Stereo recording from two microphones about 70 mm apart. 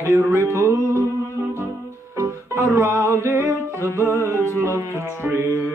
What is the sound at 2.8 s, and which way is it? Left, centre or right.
Music, right.